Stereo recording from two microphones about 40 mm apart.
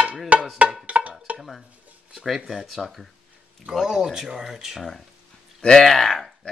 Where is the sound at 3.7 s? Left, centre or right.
Centre.